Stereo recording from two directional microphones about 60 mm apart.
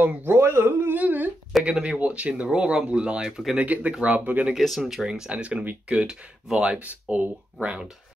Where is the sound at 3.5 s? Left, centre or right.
Right.